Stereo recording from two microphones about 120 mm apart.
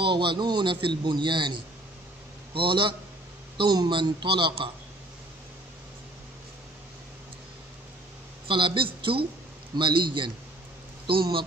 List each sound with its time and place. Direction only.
0.0 s a man's voice: 45° right (ahead or behind)
8.5 s speech: 45° right (ahead or behind)